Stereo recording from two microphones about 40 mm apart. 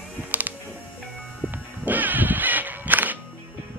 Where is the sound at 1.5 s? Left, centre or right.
Right.